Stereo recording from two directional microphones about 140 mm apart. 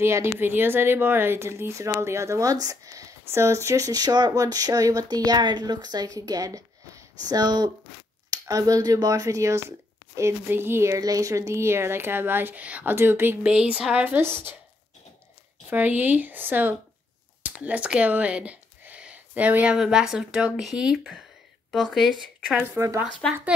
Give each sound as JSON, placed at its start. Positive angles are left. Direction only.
{"t": 0.0, "sound": "a woman's voice", "side_deg": -20}
{"t": 15.7, "sound": "a woman's voice", "side_deg": -15}
{"t": 22.6, "sound": "speech", "side_deg": -20}